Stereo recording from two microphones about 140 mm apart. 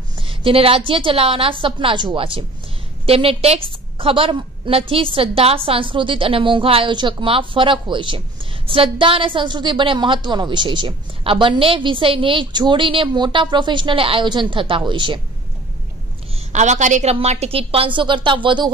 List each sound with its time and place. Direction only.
0.2 s a woman's voice: 40° right (ahead or behind)
16.3 s a woman's voice: 55° right (ahead or behind); by 18.7 s 35° right (ahead or behind)